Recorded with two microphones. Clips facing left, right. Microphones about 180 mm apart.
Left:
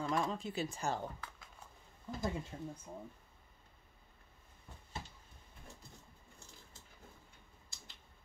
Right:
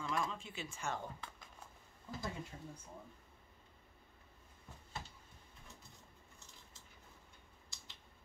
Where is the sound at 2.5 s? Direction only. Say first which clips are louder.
Left 6 dB; 40° left (ahead or behind).